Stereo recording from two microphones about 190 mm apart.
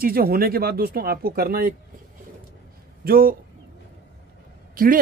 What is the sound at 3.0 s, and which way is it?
Speech, 50° right (ahead or behind).